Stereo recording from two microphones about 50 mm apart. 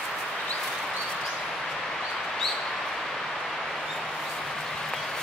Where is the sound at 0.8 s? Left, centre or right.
Centre.